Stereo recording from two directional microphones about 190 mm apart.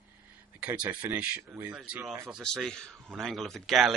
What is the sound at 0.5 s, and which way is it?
Speech, 10° right (ahead or behind).